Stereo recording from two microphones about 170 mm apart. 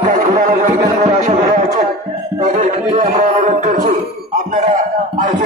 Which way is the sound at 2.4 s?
50° right (ahead or behind).